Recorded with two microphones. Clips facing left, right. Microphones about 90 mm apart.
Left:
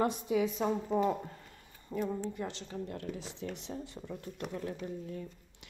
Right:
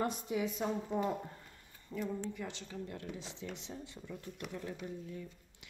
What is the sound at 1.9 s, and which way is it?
Speech, 50° left (ahead or behind).